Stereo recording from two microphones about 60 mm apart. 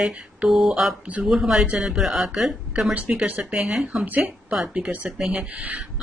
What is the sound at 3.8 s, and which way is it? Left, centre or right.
Speech, right.